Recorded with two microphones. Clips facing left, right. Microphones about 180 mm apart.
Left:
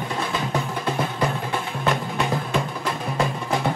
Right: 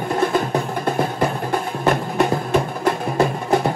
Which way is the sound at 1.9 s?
55° right (ahead or behind).